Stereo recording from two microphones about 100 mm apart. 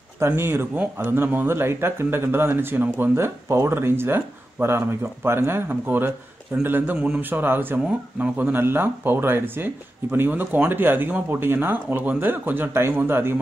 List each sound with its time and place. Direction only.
0.2 s speech: 25° right (ahead or behind)